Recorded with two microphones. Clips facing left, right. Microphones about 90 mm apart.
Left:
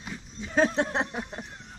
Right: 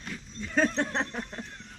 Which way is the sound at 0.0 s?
10° left (ahead or behind).